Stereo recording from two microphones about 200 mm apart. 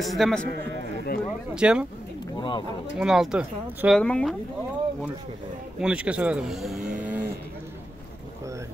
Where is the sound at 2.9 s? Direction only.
Centre (ahead or behind).